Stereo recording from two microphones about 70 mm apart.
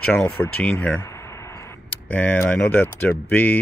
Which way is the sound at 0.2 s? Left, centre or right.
Centre.